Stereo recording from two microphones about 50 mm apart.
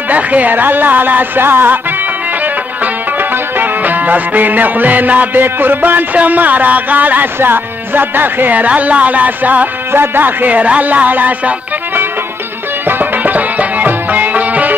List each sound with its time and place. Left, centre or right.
0.1 s speech: right
2.4 s music: right
5.4 s speech: right
7.3 s speech: right
12.8 s music: right